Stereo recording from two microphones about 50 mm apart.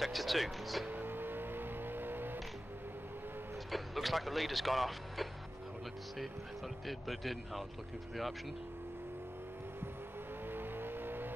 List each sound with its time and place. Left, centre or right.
0.0 s vehicle: centre
1.0 s vehicle: right
3.7 s speech: centre
6.9 s speech: centre
10.5 s vehicle: right